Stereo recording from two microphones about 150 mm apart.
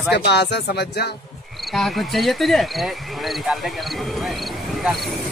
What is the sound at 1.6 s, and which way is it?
Speech, centre (ahead or behind).